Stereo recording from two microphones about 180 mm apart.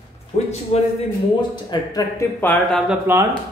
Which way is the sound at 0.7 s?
40° left (ahead or behind).